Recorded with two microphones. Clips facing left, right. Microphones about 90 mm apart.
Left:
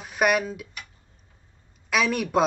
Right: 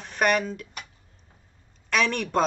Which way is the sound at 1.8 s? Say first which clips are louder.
Left 1 dB; 5° left (ahead or behind).